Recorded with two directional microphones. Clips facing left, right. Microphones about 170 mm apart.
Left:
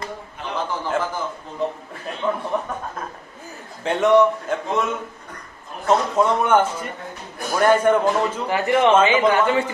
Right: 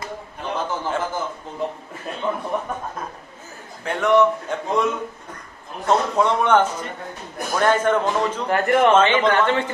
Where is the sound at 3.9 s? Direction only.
20° left (ahead or behind).